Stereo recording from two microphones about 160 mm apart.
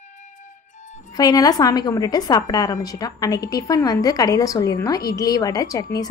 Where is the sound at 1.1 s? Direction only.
25° left (ahead or behind).